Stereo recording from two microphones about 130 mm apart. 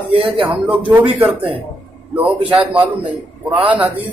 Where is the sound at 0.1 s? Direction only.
45° right (ahead or behind).